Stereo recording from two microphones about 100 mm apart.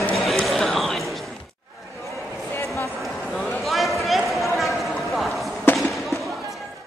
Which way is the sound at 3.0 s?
Centre (ahead or behind).